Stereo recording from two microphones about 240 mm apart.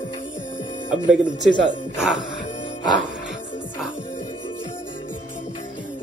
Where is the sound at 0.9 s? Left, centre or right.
Centre.